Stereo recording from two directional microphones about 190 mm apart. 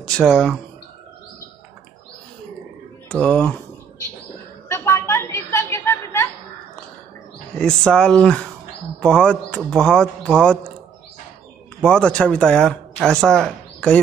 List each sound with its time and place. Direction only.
0.0 s speech: 5° left (ahead or behind)
3.1 s speech: 5° left (ahead or behind)
4.6 s a sound: 15° left (ahead or behind)
7.5 s speech: 5° left (ahead or behind)
11.8 s speech: 5° left (ahead or behind)